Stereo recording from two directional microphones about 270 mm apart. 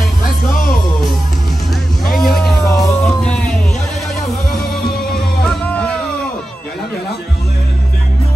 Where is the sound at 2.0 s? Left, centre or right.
Left.